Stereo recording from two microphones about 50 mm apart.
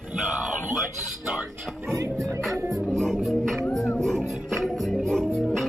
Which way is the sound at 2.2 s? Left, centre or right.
Centre.